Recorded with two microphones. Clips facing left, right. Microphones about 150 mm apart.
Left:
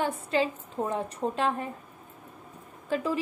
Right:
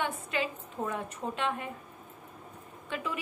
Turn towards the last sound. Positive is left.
turn(degrees=40)  # may be behind; listen again after turning